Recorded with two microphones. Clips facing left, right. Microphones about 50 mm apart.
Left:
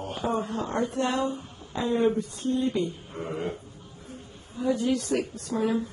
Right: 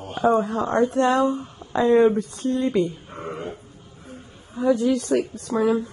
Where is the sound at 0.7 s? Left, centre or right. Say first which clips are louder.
Right 8 dB; right.